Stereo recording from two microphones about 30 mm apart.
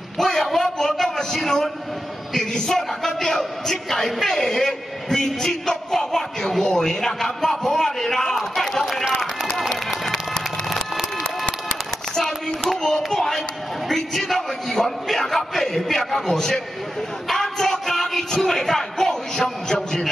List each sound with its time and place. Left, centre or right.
0.2 s a sound: centre
0.9 s a man's voice: centre
9.5 s run: centre
10.1 s music: centre
12.2 s a sound: centre
12.8 s speech: centre